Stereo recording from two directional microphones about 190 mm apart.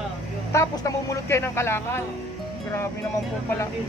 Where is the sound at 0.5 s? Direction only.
15° left (ahead or behind).